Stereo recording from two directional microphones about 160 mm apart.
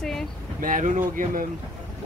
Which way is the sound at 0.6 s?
55° right (ahead or behind).